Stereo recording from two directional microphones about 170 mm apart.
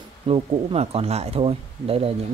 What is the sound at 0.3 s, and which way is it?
Speech, 35° right (ahead or behind).